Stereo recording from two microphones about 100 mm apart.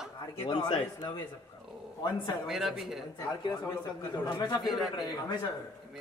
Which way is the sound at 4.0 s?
40° left (ahead or behind).